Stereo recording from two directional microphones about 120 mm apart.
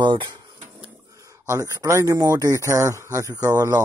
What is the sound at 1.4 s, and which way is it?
Speech, 25° right (ahead or behind).